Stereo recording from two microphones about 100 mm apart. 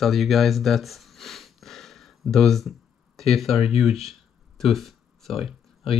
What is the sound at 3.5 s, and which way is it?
Speech, 90° left.